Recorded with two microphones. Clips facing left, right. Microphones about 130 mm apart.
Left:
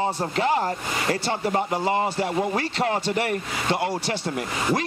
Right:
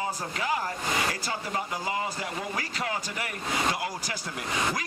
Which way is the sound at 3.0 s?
70° left (ahead or behind).